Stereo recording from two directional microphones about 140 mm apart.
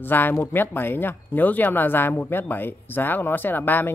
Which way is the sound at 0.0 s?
15° left (ahead or behind).